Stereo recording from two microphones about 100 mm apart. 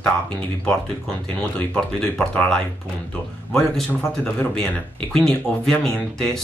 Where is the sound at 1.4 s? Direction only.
10° left (ahead or behind).